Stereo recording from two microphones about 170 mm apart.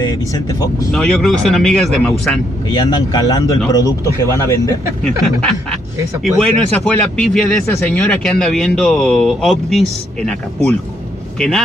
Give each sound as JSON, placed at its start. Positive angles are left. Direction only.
{"t": 0.0, "sound": "speech", "side_deg": 20}
{"t": 0.9, "sound": "speech", "side_deg": 0}
{"t": 2.7, "sound": "speech", "side_deg": 25}
{"t": 6.2, "sound": "speech", "side_deg": 5}